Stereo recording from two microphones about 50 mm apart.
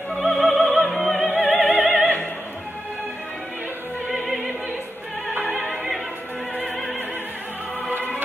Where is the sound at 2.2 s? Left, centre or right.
Left.